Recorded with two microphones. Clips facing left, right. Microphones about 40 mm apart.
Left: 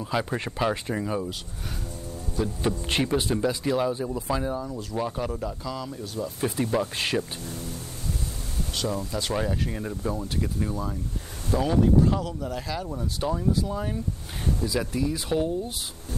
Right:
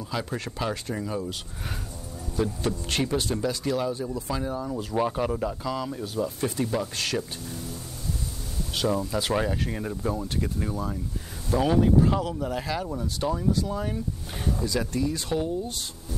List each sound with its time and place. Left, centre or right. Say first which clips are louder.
0.1 s speech: left 4 dB; centre
2.6 s speech: left 2 dB; centre
4.6 s speech: right 3 dB; centre
6.4 s speech: left 6 dB; centre
8.7 s speech: right 4 dB; centre
13.0 s speech: left 2 dB; centre